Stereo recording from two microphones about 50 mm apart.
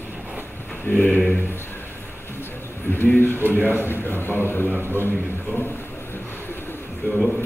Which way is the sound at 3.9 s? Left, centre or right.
Left.